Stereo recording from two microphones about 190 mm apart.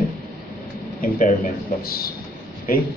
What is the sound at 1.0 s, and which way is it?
A man's voice, 50° left (ahead or behind).